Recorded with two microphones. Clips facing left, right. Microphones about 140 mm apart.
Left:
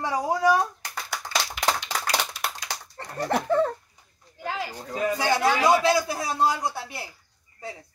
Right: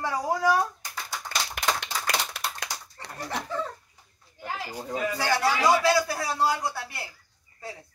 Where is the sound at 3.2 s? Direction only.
60° left (ahead or behind).